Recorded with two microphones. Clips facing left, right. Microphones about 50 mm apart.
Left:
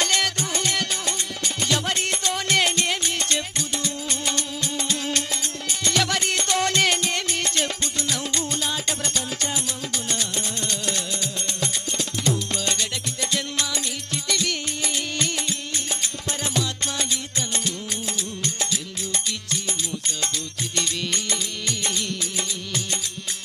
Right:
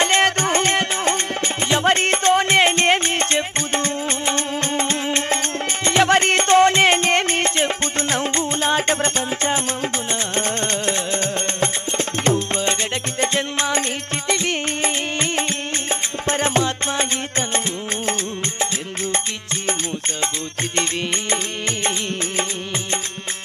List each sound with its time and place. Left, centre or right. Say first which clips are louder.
0.0 s music: right 7 dB; right
20.7 s music: right 4 dB; right